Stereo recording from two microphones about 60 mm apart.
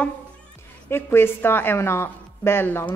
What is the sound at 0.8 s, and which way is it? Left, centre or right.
A woman's voice, left.